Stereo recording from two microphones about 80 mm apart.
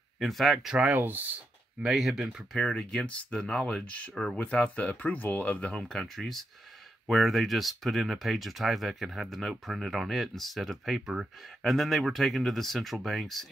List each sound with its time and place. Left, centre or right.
0.2 s speech: centre
0.8 s speech: right
1.9 s speech: centre
2.5 s speech: centre
4.1 s speech: centre
4.4 s speech: centre
5.9 s speech: centre